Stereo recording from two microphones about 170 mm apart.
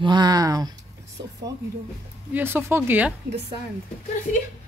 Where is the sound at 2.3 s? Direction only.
15° right (ahead or behind).